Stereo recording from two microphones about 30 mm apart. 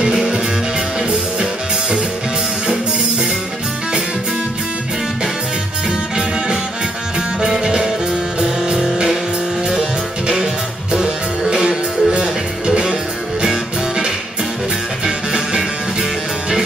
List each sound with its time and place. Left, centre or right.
0.0 s music: centre
7.2 s music: centre
9.7 s music: centre
16.0 s music: centre